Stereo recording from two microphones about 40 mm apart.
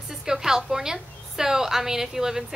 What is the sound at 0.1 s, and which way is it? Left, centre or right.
A woman's voice, centre.